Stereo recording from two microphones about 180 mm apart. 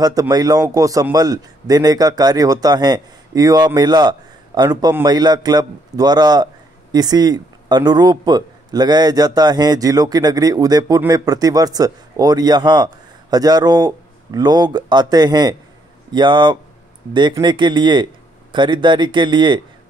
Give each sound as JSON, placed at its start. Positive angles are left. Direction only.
{"t": 0.0, "sound": "a man's voice", "side_deg": -20}